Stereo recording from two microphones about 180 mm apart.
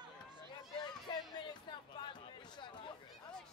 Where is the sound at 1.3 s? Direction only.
25° left (ahead or behind).